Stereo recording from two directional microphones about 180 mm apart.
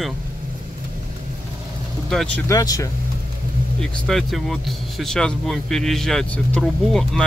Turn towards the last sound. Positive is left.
turn(degrees=0)  # may be behind; listen again after turning